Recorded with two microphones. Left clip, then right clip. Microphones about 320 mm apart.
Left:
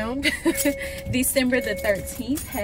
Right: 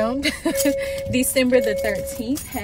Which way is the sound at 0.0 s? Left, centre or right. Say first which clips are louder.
Right 2 dB; centre.